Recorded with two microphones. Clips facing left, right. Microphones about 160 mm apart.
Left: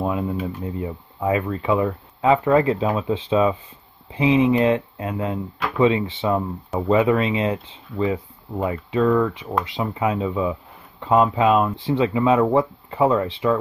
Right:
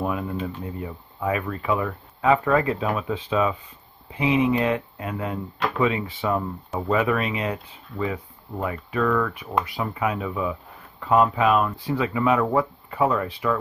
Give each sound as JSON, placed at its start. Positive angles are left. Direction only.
{"t": 0.0, "sound": "speech", "side_deg": 20}